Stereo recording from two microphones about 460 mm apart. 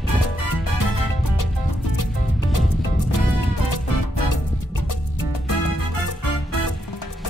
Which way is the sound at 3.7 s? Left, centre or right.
Left.